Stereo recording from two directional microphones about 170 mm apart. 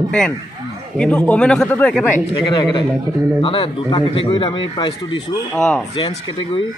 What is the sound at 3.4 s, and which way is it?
Speech, 30° left (ahead or behind).